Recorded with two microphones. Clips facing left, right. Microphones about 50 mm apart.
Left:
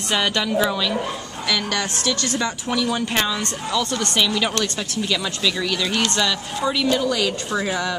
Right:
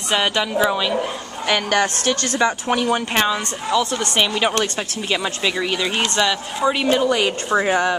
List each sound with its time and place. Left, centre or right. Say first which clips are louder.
0.1 s a woman's voice: right 2 dB; centre
1.5 s a woman's voice: right 5 dB; right
3.2 s a woman's voice: right 3 dB; right
6.7 s a woman's voice: right 3 dB; right